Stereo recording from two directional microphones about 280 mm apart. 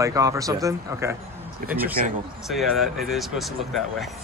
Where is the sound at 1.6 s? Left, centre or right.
Right.